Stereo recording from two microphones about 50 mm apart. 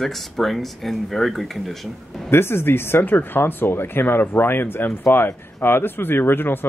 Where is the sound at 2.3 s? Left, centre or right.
Left.